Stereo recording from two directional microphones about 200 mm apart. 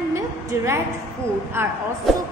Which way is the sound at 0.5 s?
15° right (ahead or behind).